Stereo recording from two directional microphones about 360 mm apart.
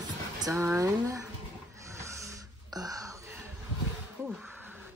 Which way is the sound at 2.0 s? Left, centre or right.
Centre.